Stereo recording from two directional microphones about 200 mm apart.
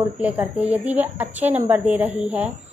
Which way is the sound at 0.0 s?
10° right (ahead or behind).